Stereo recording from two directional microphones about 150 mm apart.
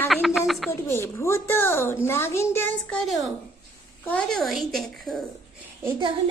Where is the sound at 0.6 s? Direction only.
15° left (ahead or behind).